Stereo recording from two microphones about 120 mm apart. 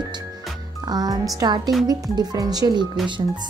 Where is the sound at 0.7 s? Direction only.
30° right (ahead or behind).